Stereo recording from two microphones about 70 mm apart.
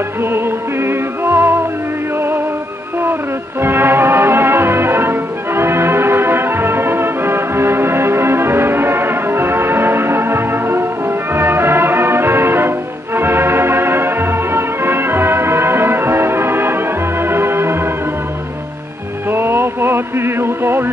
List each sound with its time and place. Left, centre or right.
0.2 s music: right
3.6 s music: right
19.3 s music: right